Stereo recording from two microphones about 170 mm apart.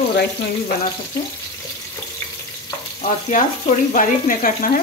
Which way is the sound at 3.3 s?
50° left (ahead or behind).